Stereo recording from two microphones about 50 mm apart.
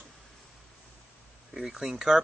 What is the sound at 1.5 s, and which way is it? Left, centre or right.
Speech, centre.